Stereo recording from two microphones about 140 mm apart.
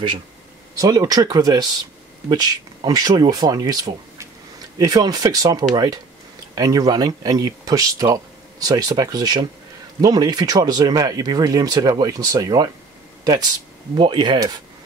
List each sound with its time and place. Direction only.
0.7 s speech: 25° right (ahead or behind)